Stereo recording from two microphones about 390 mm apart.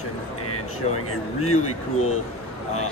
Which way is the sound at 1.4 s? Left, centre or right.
Left.